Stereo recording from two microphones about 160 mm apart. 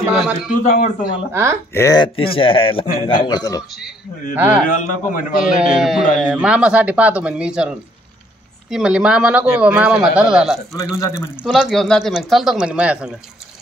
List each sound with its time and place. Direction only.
0.0 s speech: 10° right (ahead or behind)
0.7 s a man's voice: 60° left (ahead or behind)
1.3 s speech: 15° right (ahead or behind)
1.7 s speech: 15° left (ahead or behind)
2.0 s a man's voice: 35° left (ahead or behind)
3.3 s speech: 25° left (ahead or behind)
4.4 s speech: 10° right (ahead or behind)
4.6 s a man's voice: 55° left (ahead or behind)
5.8 s speech: centre (ahead or behind)
10.8 s speech: 20° left (ahead or behind)
11.4 s speech: 5° right (ahead or behind)